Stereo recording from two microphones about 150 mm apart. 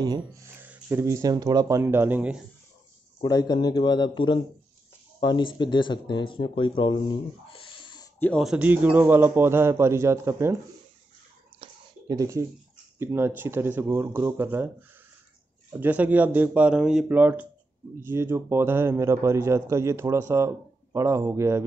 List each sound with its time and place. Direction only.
0.0 s a man's voice: 25° right (ahead or behind)
3.2 s speech: 25° left (ahead or behind)
8.4 s a man's voice: 5° right (ahead or behind)
11.6 s a sound: 25° right (ahead or behind)
13.0 s a man's voice: 15° right (ahead or behind)